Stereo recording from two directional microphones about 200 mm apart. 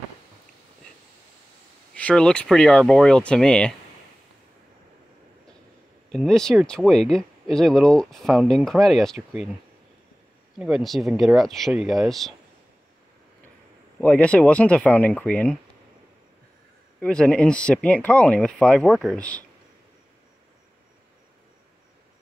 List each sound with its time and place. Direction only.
2.0 s speech: 5° left (ahead or behind)
6.1 s speech: centre (ahead or behind)
10.6 s speech: centre (ahead or behind)
14.0 s speech: 5° left (ahead or behind)
17.0 s speech: 5° left (ahead or behind)